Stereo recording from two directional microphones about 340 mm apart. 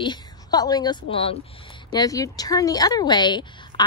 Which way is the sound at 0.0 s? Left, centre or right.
Centre.